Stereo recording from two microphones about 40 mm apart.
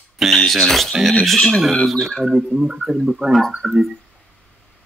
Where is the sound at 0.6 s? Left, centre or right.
Centre.